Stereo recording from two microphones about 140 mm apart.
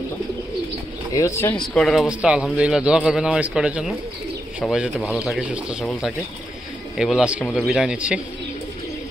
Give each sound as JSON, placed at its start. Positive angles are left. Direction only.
{"t": 1.1, "sound": "speech", "side_deg": 20}
{"t": 1.6, "sound": "a man's voice", "side_deg": 5}
{"t": 7.0, "sound": "speech", "side_deg": -5}
{"t": 7.4, "sound": "a man's voice", "side_deg": 5}